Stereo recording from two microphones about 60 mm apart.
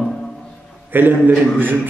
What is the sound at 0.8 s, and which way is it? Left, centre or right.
Speech, right.